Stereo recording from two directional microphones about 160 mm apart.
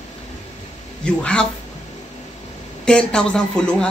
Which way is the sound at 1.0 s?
5° left (ahead or behind).